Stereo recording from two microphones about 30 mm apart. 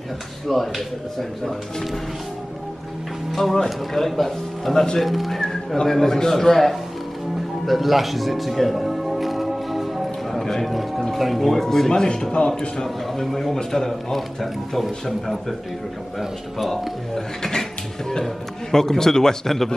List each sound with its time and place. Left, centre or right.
0.5 s speech: centre
3.5 s a man's voice: centre
5.9 s a man's voice: centre
7.6 s music: centre
10.6 s a man's voice: centre
11.9 s speech: left
12.8 s a man's voice: centre
15.0 s a man's voice: centre
16.2 s speech: centre
17.1 s a sound: centre
18.2 s a man's voice: centre